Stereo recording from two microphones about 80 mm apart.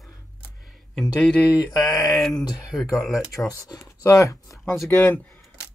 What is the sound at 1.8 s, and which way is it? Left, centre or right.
Speech, centre.